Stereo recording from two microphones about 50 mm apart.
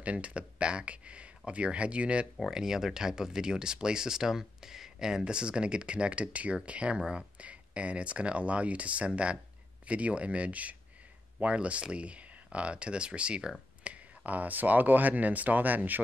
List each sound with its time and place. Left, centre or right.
0.0 s speech: right
2.5 s speech: centre
13.8 s speech: right